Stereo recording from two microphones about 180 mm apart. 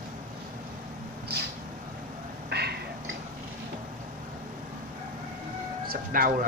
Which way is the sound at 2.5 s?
65° right (ahead or behind).